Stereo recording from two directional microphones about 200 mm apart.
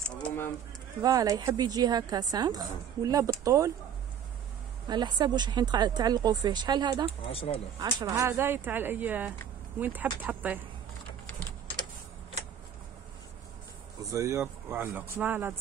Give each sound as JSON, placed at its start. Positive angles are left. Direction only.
{"t": 0.0, "sound": "bird", "side_deg": 5}
{"t": 1.0, "sound": "speech", "side_deg": -15}
{"t": 4.8, "sound": "speech", "side_deg": -20}
{"t": 7.1, "sound": "speech", "side_deg": 30}
{"t": 7.8, "sound": "speech", "side_deg": -15}
{"t": 14.1, "sound": "speech", "side_deg": -15}